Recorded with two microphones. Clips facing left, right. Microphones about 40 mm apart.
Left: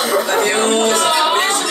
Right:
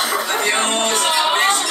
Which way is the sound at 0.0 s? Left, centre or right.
Centre.